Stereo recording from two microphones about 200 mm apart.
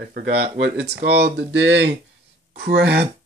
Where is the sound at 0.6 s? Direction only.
60° right (ahead or behind).